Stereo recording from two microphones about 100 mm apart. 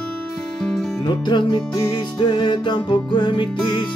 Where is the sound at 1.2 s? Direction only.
50° left (ahead or behind).